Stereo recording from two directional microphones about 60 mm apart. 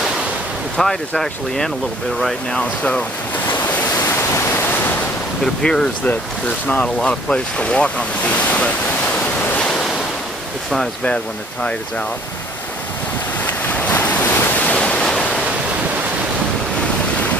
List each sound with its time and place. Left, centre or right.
0.7 s speech: centre
3.4 s waves: left
4.3 s waves: left
5.4 s speech: centre
7.0 s speech: centre
13.5 s waves: left